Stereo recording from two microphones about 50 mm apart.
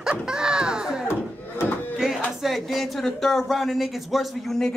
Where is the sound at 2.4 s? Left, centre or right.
Centre.